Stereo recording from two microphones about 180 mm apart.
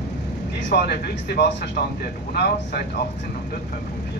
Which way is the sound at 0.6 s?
65° left (ahead or behind).